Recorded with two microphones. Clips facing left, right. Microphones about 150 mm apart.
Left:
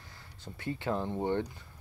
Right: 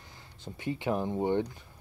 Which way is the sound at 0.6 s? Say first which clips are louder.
Right 2 dB; 15° right (ahead or behind).